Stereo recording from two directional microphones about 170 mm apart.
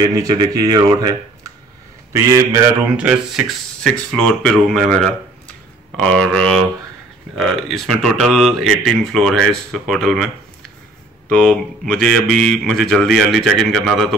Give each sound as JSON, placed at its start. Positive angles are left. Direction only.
{"t": 0.1, "sound": "speech", "side_deg": -20}
{"t": 3.1, "sound": "speech", "side_deg": 0}
{"t": 11.2, "sound": "speech", "side_deg": 5}